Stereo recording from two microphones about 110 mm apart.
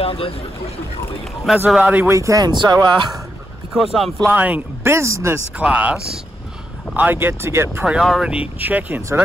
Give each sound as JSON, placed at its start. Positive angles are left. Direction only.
{"t": 0.0, "sound": "speech", "side_deg": 60}
{"t": 1.7, "sound": "speech", "side_deg": -10}
{"t": 2.0, "sound": "speech", "side_deg": -30}
{"t": 3.7, "sound": "speech", "side_deg": 0}
{"t": 4.3, "sound": "speech", "side_deg": -15}
{"t": 4.9, "sound": "speech", "side_deg": -25}
{"t": 5.6, "sound": "speech", "side_deg": -10}
{"t": 7.8, "sound": "speech", "side_deg": -5}